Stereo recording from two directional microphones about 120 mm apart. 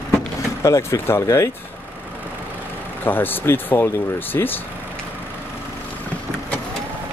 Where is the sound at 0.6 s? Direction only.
25° left (ahead or behind).